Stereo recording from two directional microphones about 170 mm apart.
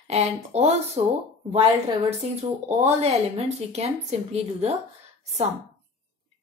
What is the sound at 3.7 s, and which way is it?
Speech, 40° right (ahead or behind).